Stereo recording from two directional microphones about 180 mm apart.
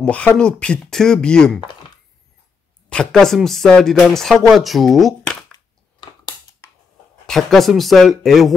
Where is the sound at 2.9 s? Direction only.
5° left (ahead or behind).